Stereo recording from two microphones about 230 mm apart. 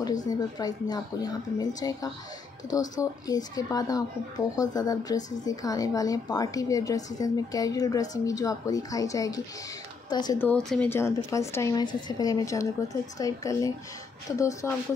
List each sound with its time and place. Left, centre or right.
0.0 s a woman's voice: centre
10.5 s a woman's voice: centre